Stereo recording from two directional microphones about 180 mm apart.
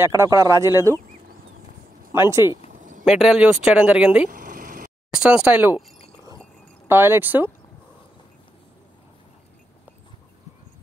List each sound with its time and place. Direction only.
0.0 s speech: 15° right (ahead or behind)
2.1 s speech: 15° right (ahead or behind)
2.7 s a sound: 45° right (ahead or behind)
3.1 s speech: 5° right (ahead or behind)
4.3 s a sound: 50° right (ahead or behind)
5.1 s speech: 5° right (ahead or behind)